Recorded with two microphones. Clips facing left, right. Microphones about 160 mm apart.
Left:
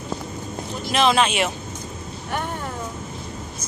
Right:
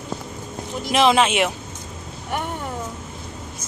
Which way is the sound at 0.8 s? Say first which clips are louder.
Right 2 dB; 15° right (ahead or behind).